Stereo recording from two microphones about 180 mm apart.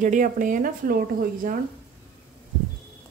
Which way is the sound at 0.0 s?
45° right (ahead or behind).